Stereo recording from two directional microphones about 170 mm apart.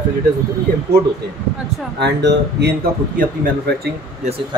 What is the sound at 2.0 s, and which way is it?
Speech, 85° right.